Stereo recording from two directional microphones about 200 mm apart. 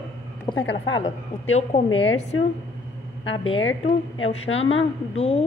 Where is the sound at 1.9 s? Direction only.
70° left (ahead or behind).